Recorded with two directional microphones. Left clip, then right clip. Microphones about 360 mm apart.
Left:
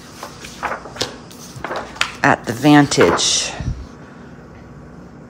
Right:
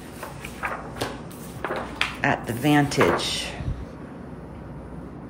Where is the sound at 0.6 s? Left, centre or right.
Centre.